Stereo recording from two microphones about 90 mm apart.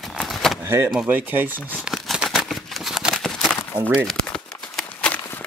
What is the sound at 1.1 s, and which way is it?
Speech, 20° right (ahead or behind).